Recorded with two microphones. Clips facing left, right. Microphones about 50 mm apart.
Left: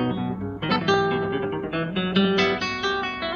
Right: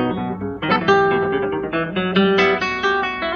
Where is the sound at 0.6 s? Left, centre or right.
Right.